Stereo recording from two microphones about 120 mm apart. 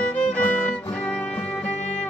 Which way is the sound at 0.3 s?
10° left (ahead or behind).